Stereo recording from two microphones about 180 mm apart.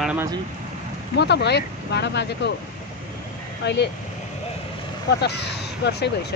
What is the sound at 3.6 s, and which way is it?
Speech, 70° left (ahead or behind).